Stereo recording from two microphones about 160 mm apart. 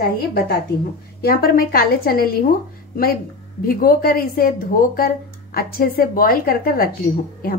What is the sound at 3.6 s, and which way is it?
Speech, 65° left (ahead or behind).